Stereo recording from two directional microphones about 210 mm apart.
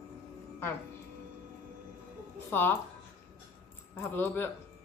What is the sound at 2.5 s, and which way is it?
Speech, 10° left (ahead or behind).